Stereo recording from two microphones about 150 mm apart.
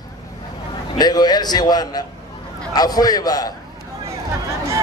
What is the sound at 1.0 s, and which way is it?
A man's voice, 25° left (ahead or behind).